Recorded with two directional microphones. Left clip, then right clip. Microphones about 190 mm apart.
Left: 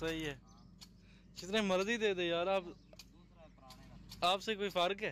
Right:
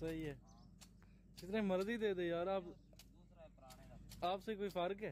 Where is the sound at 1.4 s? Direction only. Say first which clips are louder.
Left 6 dB; 10° right (ahead or behind).